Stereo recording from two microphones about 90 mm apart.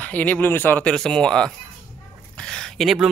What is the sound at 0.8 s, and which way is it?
Speech, 5° left (ahead or behind).